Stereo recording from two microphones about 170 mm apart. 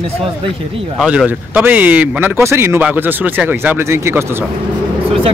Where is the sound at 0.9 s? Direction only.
5° right (ahead or behind).